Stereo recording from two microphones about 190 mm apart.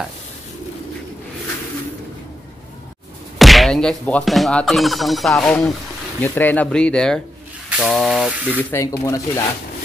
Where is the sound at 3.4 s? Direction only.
Centre (ahead or behind).